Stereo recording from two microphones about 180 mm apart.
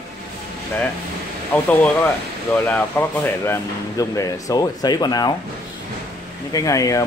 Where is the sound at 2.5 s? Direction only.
10° left (ahead or behind).